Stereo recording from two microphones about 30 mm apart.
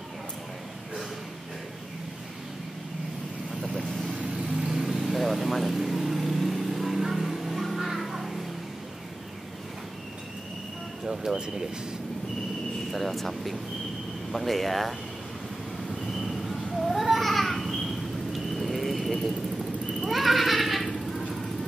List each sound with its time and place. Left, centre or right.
3.6 s vehicle: centre
4.1 s vehicle: centre
11.3 s speech: right
12.9 s speech: centre
16.2 s babbling: centre
20.1 s a sound: centre